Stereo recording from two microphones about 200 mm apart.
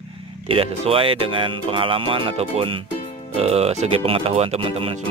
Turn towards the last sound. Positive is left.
turn(degrees=-30)  # may be behind; listen again after turning